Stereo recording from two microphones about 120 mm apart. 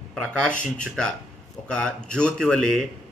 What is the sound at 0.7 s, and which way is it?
Speech, 5° left (ahead or behind).